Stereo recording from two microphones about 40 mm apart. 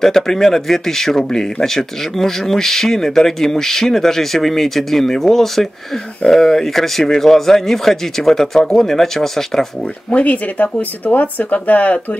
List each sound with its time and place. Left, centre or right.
0.0 s speech: centre
10.1 s speech: left